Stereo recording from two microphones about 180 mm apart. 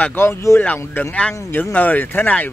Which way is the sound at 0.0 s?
10° left (ahead or behind).